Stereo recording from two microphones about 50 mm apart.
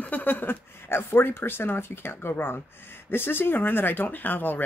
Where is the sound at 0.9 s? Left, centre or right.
Left.